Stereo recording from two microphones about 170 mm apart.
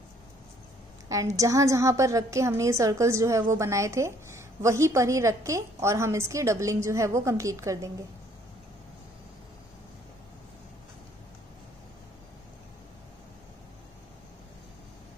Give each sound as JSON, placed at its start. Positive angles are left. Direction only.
{"t": 1.0, "sound": "a woman's voice", "side_deg": -20}